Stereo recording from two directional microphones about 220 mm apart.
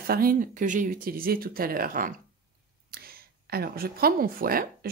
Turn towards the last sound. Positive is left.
turn(degrees=-40)  # may be behind; listen again after turning